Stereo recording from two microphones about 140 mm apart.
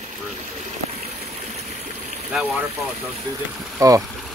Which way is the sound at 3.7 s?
25° right (ahead or behind).